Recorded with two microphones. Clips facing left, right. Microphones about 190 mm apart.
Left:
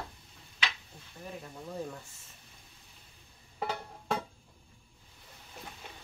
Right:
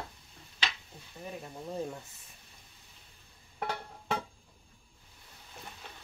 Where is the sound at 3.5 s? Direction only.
Centre (ahead or behind).